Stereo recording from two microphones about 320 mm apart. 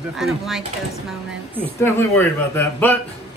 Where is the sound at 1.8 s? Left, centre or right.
Centre.